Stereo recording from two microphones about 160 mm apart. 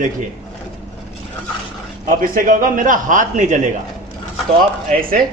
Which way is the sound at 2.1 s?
60° right (ahead or behind).